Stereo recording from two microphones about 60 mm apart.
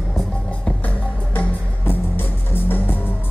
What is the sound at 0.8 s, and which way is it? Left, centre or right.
Music, left.